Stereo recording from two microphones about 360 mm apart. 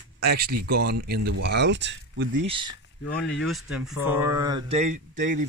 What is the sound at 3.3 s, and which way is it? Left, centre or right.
Speech, centre.